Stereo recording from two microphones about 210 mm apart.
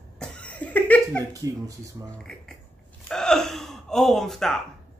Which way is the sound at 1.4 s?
15° right (ahead or behind).